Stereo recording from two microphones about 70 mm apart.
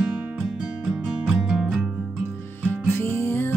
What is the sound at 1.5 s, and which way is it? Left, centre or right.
Music, centre.